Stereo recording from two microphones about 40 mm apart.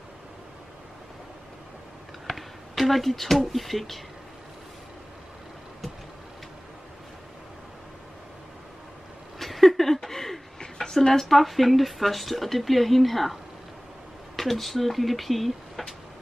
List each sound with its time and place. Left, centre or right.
2.2 s speech: centre
9.4 s a sound: centre
10.6 s speech: centre